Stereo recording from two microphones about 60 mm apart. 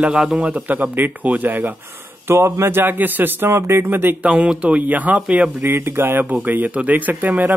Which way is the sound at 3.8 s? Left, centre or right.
Right.